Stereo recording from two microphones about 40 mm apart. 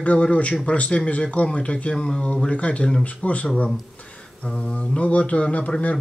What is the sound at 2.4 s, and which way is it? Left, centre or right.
Speech, left.